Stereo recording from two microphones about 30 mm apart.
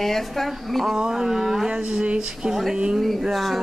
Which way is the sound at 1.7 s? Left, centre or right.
Right.